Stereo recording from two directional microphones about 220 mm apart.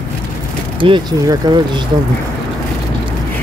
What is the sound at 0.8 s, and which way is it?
Speech, 20° right (ahead or behind).